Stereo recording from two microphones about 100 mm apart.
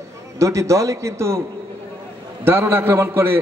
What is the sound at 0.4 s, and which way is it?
A man's voice, 30° right (ahead or behind).